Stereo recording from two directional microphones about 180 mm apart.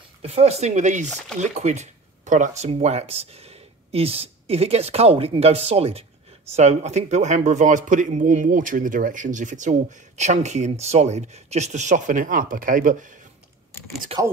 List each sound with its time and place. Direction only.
0.2 s a man's voice: 35° right (ahead or behind)